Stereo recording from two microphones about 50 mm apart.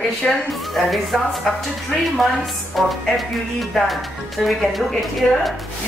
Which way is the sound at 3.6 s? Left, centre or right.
Centre.